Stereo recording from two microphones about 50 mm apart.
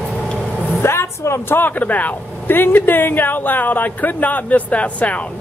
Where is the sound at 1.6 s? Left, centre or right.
Left.